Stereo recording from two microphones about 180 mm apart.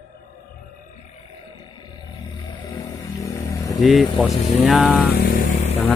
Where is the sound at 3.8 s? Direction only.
Centre (ahead or behind).